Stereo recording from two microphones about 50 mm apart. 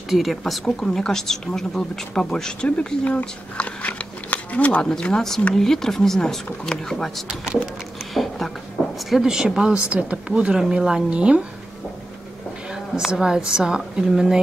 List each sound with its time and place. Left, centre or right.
0.1 s speech: centre
3.5 s a sound: left
4.9 s speech: centre
7.2 s speech: centre
8.8 s a sound: centre
9.1 s a woman's voice: centre
9.9 s speech: right
13.1 s a woman's voice: centre